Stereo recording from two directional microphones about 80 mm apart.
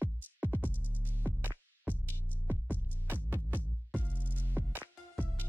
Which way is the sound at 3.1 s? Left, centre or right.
Right.